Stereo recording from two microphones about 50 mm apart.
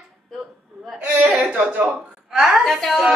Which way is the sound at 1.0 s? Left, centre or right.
Right.